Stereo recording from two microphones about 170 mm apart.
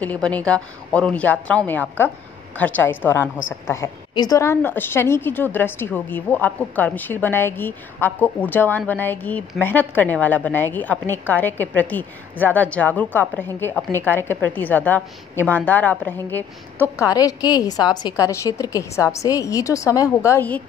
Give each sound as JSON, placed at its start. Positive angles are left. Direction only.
{"t": 0.0, "sound": "a woman's voice", "side_deg": 10}